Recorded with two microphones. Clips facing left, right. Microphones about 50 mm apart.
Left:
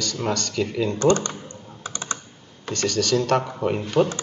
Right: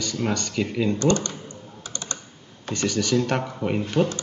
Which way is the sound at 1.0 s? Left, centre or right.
Left.